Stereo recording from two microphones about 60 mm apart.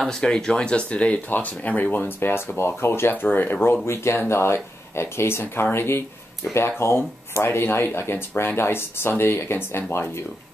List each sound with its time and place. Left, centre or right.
0.0 s speech: centre; by 3.8 s left
3.8 s speech: left